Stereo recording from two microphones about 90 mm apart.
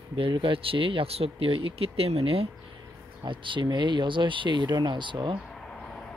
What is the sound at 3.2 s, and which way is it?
Speech, 65° right (ahead or behind).